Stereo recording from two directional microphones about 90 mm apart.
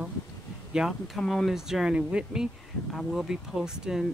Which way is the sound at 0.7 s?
Centre (ahead or behind).